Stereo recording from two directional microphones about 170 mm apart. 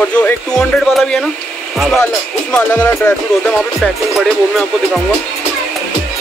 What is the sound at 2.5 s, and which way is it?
Speech, 5° left (ahead or behind).